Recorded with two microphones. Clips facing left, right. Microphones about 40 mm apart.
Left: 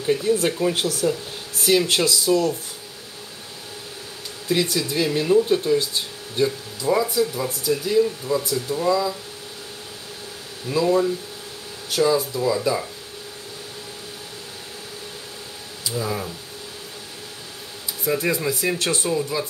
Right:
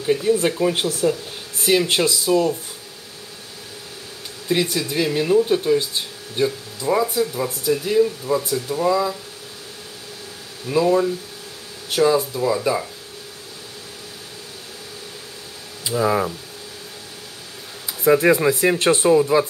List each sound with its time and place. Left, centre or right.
0.0 s speech: centre
4.5 s speech: centre
10.7 s speech: centre
15.8 s speech: right
17.8 s speech: right